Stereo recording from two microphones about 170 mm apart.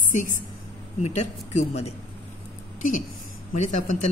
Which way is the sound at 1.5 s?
40° left (ahead or behind).